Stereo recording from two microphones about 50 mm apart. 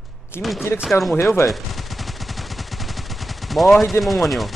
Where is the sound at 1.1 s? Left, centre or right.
Left.